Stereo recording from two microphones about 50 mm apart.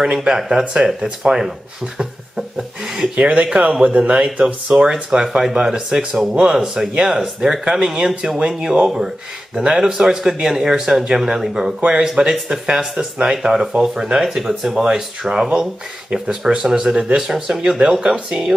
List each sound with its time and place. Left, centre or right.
0.0 s speech: centre
2.0 s a sound: centre
3.2 s speech: right
8.8 s speech: centre